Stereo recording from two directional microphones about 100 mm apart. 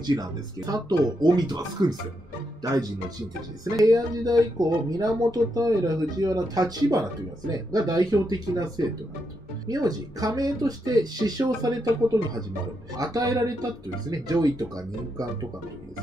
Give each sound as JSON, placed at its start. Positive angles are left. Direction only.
{"t": 0.0, "sound": "speech", "side_deg": -45}
{"t": 12.9, "sound": "speech", "side_deg": -40}